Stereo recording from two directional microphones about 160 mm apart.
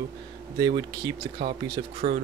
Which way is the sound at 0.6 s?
25° right (ahead or behind).